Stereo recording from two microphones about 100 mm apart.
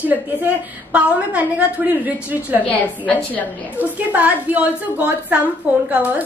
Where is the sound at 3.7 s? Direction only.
15° right (ahead or behind).